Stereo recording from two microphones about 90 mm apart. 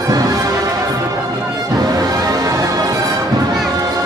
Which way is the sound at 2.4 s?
40° right (ahead or behind).